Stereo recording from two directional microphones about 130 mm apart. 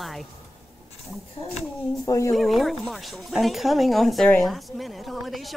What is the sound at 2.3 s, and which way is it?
Speech, centre (ahead or behind).